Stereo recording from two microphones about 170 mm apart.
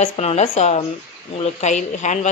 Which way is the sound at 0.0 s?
40° left (ahead or behind).